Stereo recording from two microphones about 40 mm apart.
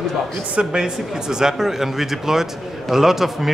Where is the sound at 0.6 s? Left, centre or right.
Centre.